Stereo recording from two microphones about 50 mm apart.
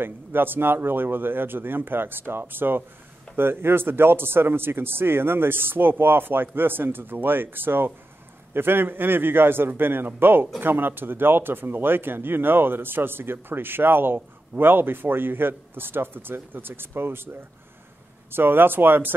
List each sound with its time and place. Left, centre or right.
0.0 s speech: right
18.3 s speech: right